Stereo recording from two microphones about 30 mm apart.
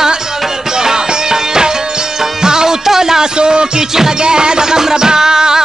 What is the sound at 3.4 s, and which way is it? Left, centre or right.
Music, right.